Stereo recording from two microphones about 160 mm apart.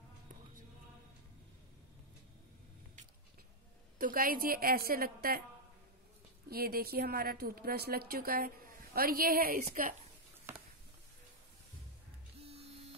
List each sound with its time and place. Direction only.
4.0 s speech: 60° right (ahead or behind)
6.5 s speech: 75° right (ahead or behind)
12.4 s printer: 40° right (ahead or behind)